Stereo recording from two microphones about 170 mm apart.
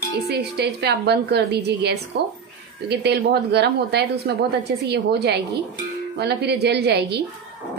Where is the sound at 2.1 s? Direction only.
90° right.